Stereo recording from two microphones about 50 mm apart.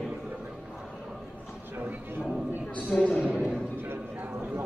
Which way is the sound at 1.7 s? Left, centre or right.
Right.